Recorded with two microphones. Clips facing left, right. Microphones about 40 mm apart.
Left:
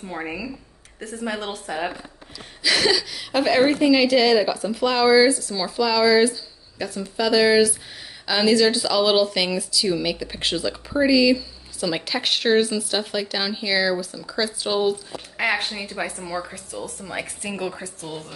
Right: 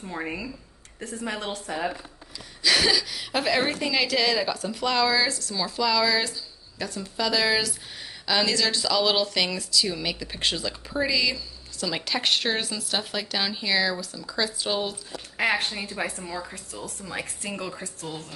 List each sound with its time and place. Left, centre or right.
0.0 s speech: centre
2.6 s speech: centre
17.0 s a woman's voice: left